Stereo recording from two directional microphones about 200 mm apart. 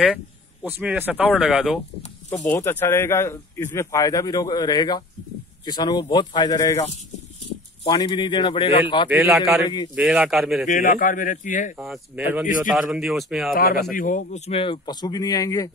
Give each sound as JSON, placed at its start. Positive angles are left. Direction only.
{"t": 0.7, "sound": "speech", "side_deg": -10}
{"t": 2.4, "sound": "speech", "side_deg": 10}
{"t": 7.8, "sound": "speech", "side_deg": 20}
{"t": 9.1, "sound": "a man's voice", "side_deg": -5}
{"t": 10.7, "sound": "speech", "side_deg": 40}
{"t": 11.8, "sound": "a man's voice", "side_deg": -5}
{"t": 13.9, "sound": "speech", "side_deg": 40}